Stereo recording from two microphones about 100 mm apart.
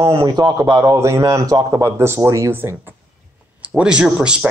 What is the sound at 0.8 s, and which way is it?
Speech, 30° right (ahead or behind).